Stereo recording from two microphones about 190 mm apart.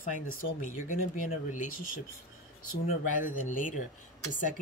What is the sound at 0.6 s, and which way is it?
Speech, 40° left (ahead or behind).